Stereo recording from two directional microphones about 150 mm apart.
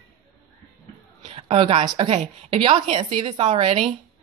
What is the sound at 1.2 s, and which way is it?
Speech, 40° right (ahead or behind).